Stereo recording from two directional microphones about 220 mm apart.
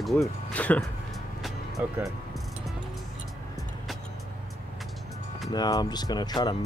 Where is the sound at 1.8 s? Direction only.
10° right (ahead or behind).